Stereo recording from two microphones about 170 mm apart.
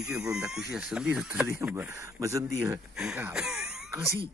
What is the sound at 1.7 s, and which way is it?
Speech, 15° right (ahead or behind).